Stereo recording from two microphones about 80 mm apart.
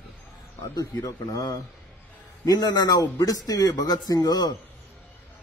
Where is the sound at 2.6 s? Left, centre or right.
Left.